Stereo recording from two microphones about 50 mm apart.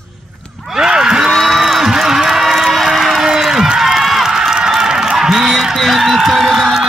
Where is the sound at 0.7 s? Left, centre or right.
Centre.